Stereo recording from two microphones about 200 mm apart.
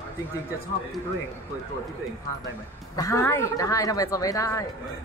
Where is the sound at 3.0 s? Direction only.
15° left (ahead or behind).